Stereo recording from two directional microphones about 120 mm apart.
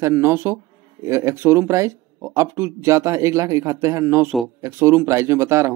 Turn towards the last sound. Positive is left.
turn(degrees=-20)  # may be behind; listen again after turning